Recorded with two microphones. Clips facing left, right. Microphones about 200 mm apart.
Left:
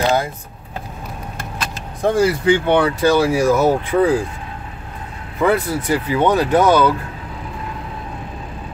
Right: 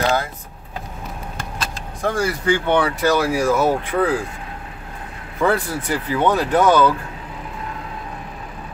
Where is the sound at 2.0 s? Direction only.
20° left (ahead or behind).